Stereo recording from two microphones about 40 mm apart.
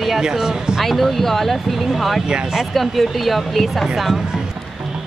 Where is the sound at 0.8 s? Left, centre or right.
Centre.